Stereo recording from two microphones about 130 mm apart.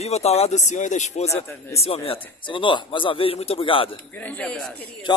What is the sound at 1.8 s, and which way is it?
Speech, 45° left (ahead or behind).